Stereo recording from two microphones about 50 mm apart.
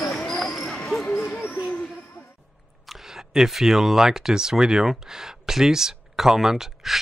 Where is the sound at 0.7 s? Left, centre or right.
Centre.